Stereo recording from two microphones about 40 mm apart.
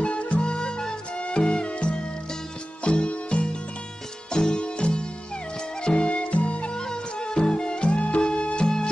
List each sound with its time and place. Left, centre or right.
0.0 s music: left
6.8 s music: centre